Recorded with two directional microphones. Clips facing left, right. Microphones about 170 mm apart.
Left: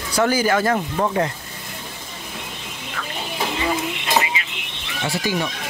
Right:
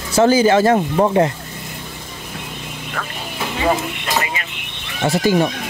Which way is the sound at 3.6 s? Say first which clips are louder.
Right 8 dB; 50° right (ahead or behind).